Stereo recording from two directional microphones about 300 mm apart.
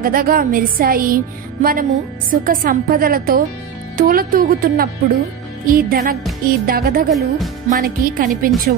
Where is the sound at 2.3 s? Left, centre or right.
Right.